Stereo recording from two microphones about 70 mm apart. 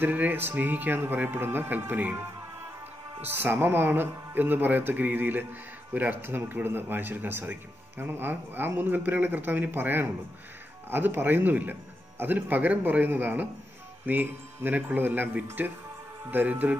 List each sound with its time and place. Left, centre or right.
0.0 s speech: right